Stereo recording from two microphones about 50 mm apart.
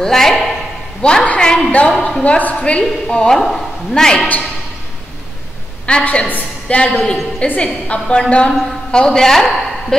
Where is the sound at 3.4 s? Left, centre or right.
Centre.